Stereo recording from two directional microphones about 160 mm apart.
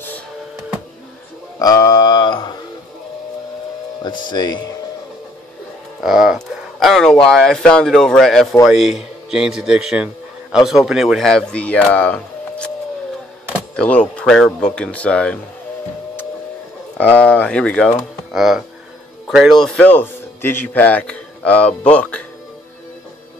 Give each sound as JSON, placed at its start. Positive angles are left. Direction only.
{"t": 1.6, "sound": "a sound", "side_deg": 25}
{"t": 4.0, "sound": "speech", "side_deg": 30}
{"t": 5.9, "sound": "a sound", "side_deg": -5}
{"t": 7.2, "sound": "a man's voice", "side_deg": 5}
{"t": 13.7, "sound": "speech", "side_deg": 10}
{"t": 17.0, "sound": "speech", "side_deg": 10}
{"t": 19.2, "sound": "music", "side_deg": 0}
{"t": 19.6, "sound": "speech", "side_deg": 5}